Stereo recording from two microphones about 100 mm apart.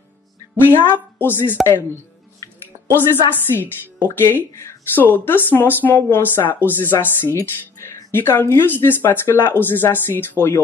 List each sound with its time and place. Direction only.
0.7 s speech: 20° left (ahead or behind)
2.9 s speech: 20° left (ahead or behind)